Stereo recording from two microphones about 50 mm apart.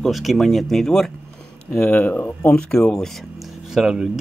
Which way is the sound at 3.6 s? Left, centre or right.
Centre.